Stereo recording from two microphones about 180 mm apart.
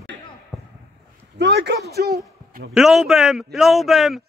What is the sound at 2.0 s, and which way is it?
Speech, 60° right (ahead or behind).